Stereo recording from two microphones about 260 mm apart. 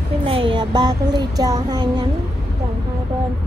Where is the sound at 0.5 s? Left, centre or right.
Centre.